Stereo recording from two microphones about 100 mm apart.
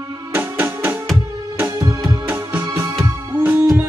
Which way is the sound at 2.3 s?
20° right (ahead or behind).